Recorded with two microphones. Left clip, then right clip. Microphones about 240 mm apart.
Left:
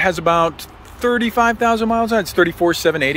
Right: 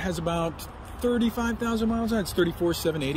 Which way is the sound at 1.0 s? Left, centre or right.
Centre.